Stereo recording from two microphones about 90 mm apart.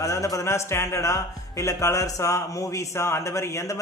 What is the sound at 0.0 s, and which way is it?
A man's voice, 40° left (ahead or behind).